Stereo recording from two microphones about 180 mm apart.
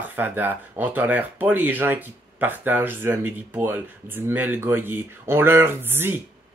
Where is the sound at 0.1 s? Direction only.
10° right (ahead or behind).